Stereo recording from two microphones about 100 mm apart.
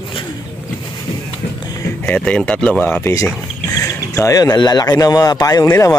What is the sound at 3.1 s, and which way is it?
Speech, 35° left (ahead or behind).